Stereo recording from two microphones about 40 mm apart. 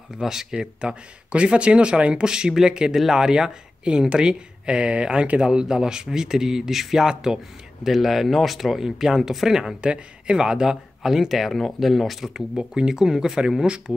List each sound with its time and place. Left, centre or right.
0.2 s speech: centre
0.6 s speech: right; by 9.6 s centre
9.8 s speech: right; by 12.4 s centre
12.5 s speech: centre